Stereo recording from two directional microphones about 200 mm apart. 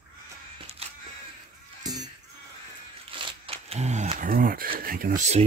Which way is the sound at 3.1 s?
25° right (ahead or behind).